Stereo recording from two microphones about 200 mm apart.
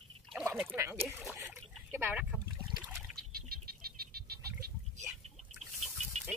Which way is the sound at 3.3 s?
50° right (ahead or behind).